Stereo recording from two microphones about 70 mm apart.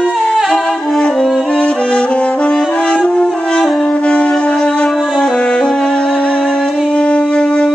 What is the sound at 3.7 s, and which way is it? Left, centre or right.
Wind instrument, centre.